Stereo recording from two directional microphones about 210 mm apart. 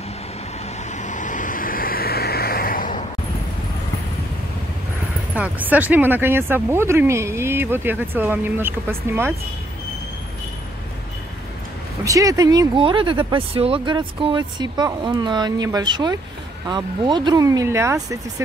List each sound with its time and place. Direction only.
0.9 s vehicle: 35° left (ahead or behind)
5.3 s speech: 5° right (ahead or behind)
12.0 s speech: 15° right (ahead or behind)